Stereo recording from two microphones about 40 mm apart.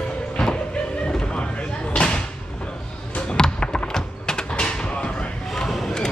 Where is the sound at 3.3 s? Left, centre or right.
Centre.